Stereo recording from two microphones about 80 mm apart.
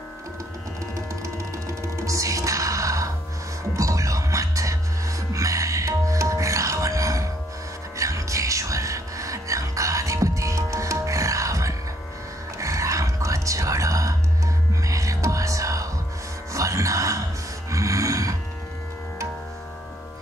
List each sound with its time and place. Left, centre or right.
1.2 s music: right
17.6 s snort: right